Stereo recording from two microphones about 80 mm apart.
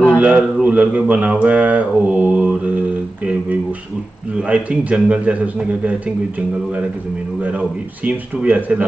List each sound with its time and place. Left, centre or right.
0.2 s speech: centre
4.4 s speech: centre
7.4 s a man's voice: centre